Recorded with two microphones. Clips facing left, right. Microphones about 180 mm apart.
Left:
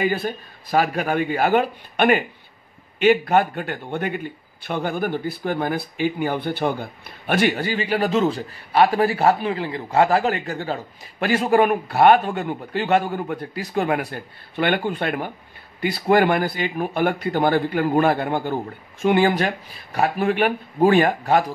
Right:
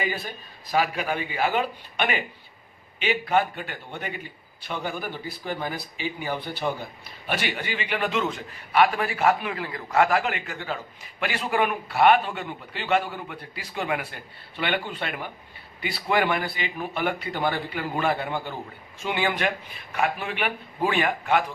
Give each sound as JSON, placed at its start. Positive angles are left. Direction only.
{"t": 0.0, "sound": "speech", "side_deg": 55}